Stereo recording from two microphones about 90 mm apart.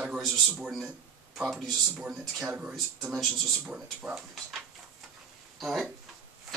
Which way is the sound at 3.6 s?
10° right (ahead or behind).